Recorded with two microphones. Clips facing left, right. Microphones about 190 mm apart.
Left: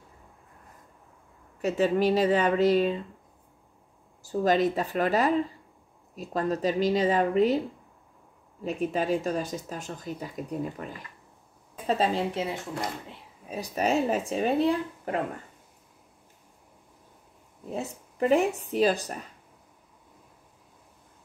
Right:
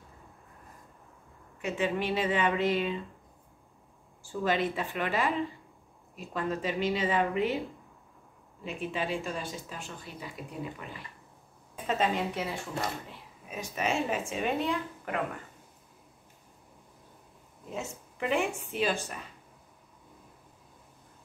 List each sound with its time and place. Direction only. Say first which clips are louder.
1.6 s speech: left 7 dB; 40° left (ahead or behind)
4.2 s speech: left 6 dB; 40° left (ahead or behind)
8.6 s speech: left 6 dB; 40° left (ahead or behind); by 12.9 s 25° left (ahead or behind)
13.5 s speech: left 5 dB; 35° left (ahead or behind)
17.6 s speech: left 4 dB; 35° left (ahead or behind)